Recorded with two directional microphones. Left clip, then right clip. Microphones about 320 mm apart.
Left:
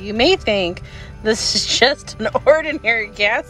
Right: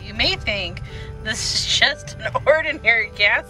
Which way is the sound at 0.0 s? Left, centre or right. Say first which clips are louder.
Left 6 dB; centre.